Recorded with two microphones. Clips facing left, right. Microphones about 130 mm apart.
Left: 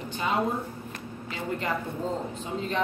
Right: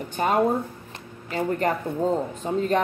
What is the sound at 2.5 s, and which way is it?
Speech, 45° right (ahead or behind).